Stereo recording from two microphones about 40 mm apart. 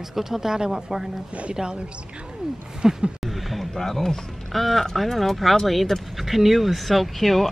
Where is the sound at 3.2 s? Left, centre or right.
Centre.